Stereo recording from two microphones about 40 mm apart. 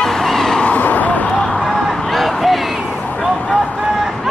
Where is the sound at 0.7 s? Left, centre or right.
Left.